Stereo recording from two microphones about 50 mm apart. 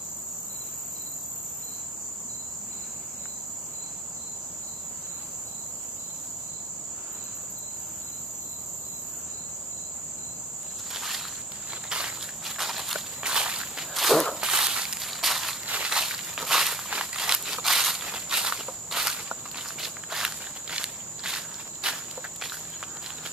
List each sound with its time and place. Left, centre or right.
10.9 s walk: centre
12.4 s walk: centre
13.2 s a sound: centre
13.9 s walk: centre
14.4 s walk: centre
15.0 s walk: centre
15.6 s a sound: right
15.9 s walk: centre